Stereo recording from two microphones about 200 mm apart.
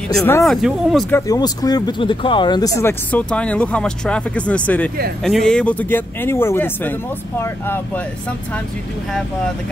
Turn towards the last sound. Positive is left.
turn(degrees=10)  # may be behind; listen again after turning